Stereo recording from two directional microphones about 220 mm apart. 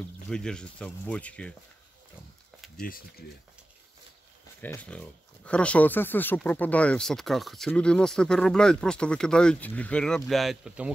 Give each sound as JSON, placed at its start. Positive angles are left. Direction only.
{"t": 0.3, "sound": "speech", "side_deg": 5}
{"t": 2.8, "sound": "speech", "side_deg": 40}
{"t": 4.6, "sound": "speech", "side_deg": 10}